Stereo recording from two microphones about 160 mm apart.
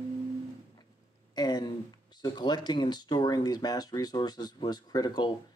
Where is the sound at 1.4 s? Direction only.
25° left (ahead or behind).